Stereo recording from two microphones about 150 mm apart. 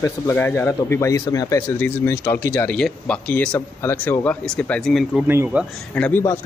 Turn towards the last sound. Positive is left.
turn(degrees=10)  # may be behind; listen again after turning